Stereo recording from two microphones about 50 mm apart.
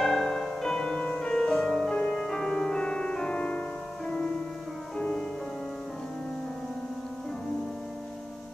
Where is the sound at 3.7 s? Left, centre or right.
Centre.